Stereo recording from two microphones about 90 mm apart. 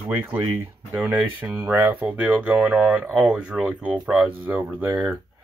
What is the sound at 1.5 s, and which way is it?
Speech, 30° right (ahead or behind).